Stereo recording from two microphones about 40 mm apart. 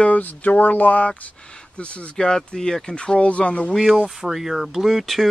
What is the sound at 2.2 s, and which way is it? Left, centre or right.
Speech, centre.